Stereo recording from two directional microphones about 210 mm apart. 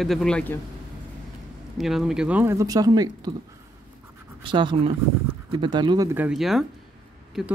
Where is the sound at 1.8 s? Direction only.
Centre (ahead or behind); by 3.3 s 20° right (ahead or behind).